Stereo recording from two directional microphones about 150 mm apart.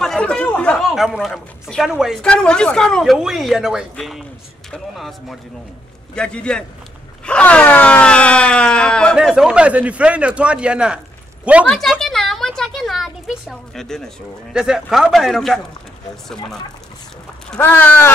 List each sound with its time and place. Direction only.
0.0 s speech: 5° left (ahead or behind)
7.2 s wail: 10° left (ahead or behind)
9.1 s speech: 5° right (ahead or behind)
17.5 s speech: 15° left (ahead or behind)